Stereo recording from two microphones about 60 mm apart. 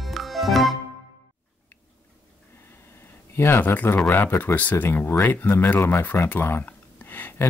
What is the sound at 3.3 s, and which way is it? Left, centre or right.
Speech, left.